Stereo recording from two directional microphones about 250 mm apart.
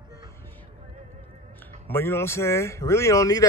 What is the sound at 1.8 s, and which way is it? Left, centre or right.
Speech, centre.